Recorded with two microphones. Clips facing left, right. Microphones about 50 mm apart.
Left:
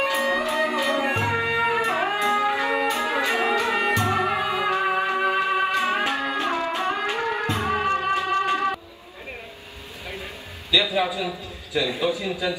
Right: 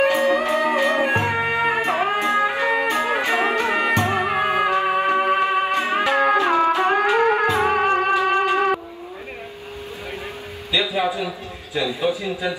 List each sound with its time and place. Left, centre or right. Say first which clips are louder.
0.0 s music: right 5 dB; right
10.7 s a sound: right 1 dB; right
12.0 s a man's voice: right 2 dB; right